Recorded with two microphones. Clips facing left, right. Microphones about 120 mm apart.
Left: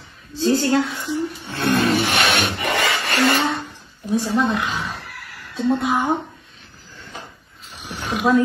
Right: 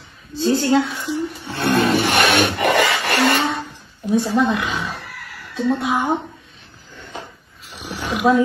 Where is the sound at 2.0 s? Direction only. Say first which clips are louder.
Right 3 dB; 55° right (ahead or behind).